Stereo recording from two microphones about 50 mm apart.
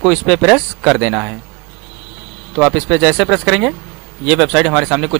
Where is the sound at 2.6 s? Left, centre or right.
Centre.